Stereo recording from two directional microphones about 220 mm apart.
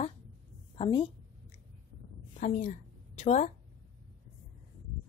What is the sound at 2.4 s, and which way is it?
A woman's voice, 35° left (ahead or behind).